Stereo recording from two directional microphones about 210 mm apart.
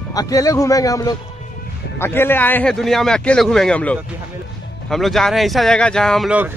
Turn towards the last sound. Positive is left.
turn(degrees=-5)  # may be behind; listen again after turning